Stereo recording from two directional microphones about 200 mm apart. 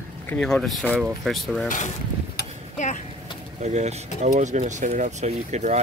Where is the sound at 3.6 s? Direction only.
35° right (ahead or behind).